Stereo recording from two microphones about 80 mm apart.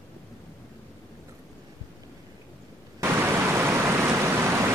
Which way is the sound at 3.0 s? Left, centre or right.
Right.